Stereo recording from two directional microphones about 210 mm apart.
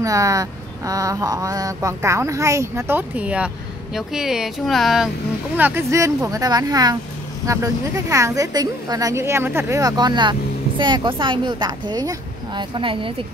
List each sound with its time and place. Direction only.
0.0 s speech: 15° right (ahead or behind)